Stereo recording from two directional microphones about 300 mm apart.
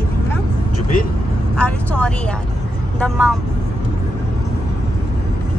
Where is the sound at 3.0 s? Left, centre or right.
Centre.